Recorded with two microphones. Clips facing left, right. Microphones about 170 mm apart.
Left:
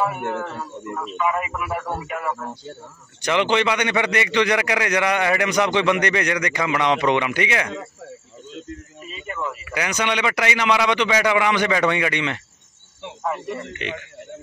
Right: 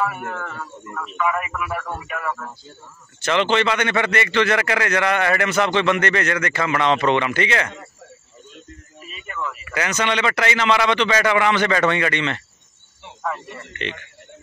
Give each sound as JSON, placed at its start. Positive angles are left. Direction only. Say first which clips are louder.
{"t": 0.0, "sound": "a man's voice", "louder": "left 2 dB", "side_deg": 25}
{"t": 9.0, "sound": "a sound", "louder": "left 1 dB", "side_deg": 25}
{"t": 9.7, "sound": "a man's voice", "louder": "right 2 dB", "side_deg": 10}
{"t": 13.2, "sound": "a man's voice", "louder": "left 2 dB", "side_deg": 25}